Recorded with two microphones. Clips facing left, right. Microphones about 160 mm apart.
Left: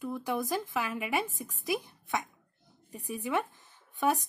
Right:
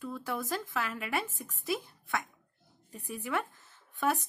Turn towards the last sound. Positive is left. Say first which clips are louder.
# left 2 dB
turn(degrees=15)  # may be behind; listen again after turning